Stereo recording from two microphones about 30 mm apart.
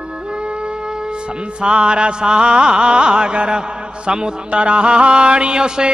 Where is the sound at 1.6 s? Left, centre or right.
Right.